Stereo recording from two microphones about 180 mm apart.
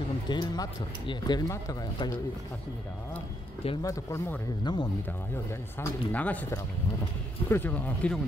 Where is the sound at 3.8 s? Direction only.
20° left (ahead or behind).